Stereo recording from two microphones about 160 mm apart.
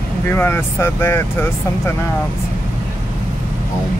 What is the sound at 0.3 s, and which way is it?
Speech, 15° left (ahead or behind).